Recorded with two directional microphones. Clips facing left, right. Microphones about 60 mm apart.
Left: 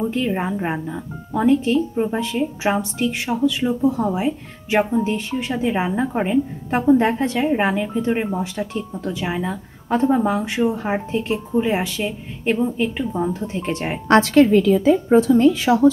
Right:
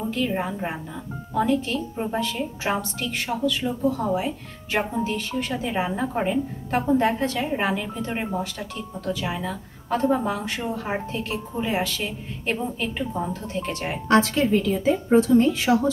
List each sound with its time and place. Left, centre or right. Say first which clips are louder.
0.1 s a woman's voice: left 4 dB; left
11.9 s a woman's voice: left 5 dB; centre
14.0 s a woman's voice: left 6 dB; left